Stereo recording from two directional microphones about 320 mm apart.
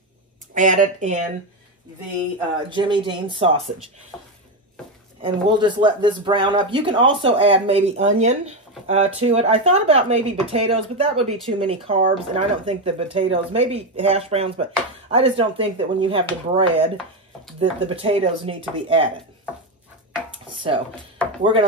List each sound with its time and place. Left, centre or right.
0.6 s speech: right
2.7 s speech: centre
5.2 s speech: centre
20.4 s speech: centre